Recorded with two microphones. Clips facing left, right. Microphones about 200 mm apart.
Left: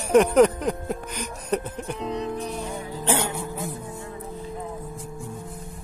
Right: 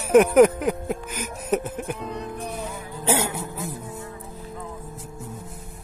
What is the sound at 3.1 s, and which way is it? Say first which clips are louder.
Music: right 2 dB; 5° right (ahead or behind).